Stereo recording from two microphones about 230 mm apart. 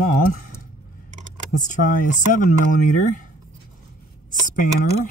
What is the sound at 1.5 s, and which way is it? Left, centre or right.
Speech, left.